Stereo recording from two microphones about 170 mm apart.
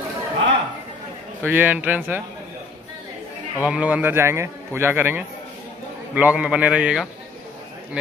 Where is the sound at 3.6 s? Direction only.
10° right (ahead or behind).